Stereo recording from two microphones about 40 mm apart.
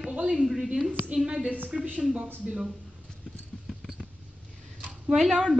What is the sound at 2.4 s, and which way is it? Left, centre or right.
Speech, right.